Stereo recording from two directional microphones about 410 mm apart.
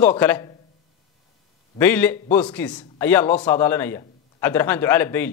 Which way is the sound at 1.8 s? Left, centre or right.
Centre.